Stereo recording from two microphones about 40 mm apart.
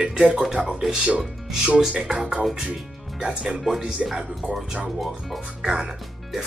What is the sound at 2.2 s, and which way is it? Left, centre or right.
Speech, right.